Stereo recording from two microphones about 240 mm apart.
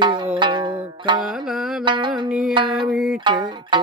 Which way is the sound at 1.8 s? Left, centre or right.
Centre.